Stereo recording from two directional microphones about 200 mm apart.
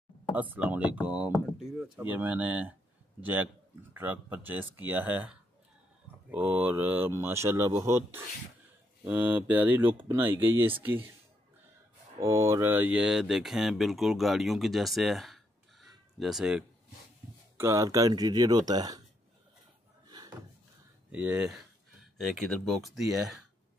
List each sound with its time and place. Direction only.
0.4 s speech: 10° right (ahead or behind)
6.3 s speech: 10° right (ahead or behind)
12.2 s speech: 15° right (ahead or behind)
17.6 s speech: 15° right (ahead or behind)
21.1 s speech: 5° right (ahead or behind)
22.7 s speech: centre (ahead or behind)